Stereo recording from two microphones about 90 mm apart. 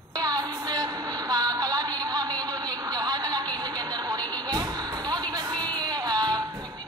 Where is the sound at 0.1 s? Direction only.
45° right (ahead or behind).